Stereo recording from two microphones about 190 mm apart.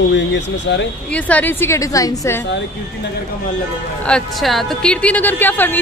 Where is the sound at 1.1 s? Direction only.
5° left (ahead or behind).